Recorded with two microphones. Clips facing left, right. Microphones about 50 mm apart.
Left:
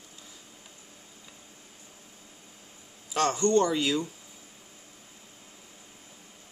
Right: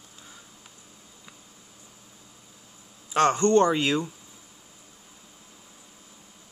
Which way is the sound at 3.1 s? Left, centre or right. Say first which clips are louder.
Right 4 dB; right.